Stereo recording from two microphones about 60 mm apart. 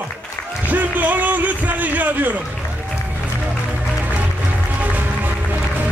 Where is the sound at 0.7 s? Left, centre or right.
Right.